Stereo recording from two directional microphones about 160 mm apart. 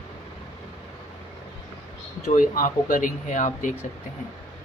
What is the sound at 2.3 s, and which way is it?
Speech, 55° left (ahead or behind).